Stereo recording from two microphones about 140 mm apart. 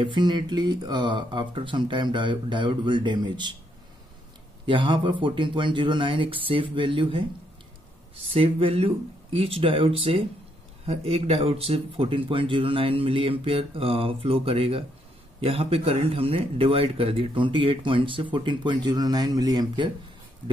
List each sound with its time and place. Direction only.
0.0 s speech: 35° right (ahead or behind)
4.6 s speech: 35° right (ahead or behind)
8.3 s speech: 40° right (ahead or behind)